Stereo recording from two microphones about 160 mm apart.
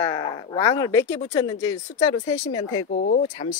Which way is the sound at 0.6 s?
20° left (ahead or behind).